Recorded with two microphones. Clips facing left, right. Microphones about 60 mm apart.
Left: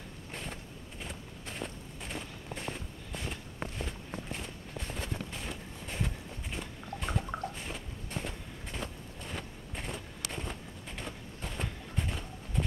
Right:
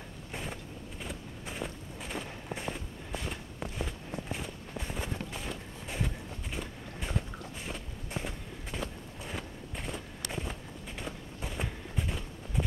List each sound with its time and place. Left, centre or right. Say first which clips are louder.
0.3 s vehicle: right 2 dB; centre
1.0 s walk: right 2 dB; centre
10.3 s a sound: right 2 dB; centre